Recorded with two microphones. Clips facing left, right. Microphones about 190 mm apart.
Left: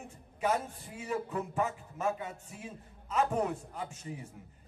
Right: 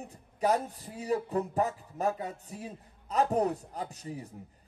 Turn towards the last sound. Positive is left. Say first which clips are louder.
# right 3 dB
turn(degrees=-35)  # may be behind; listen again after turning